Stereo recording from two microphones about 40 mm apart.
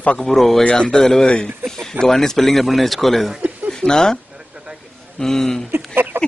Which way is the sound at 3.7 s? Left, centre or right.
Centre.